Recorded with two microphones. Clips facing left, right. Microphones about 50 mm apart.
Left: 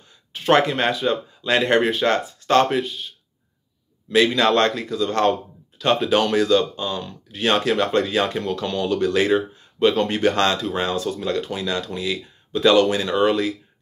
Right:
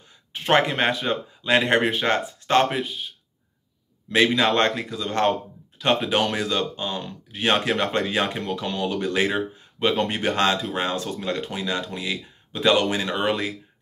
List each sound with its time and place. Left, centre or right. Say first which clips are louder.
0.3 s speech: left 3 dB; right
4.1 s speech: left 2 dB; right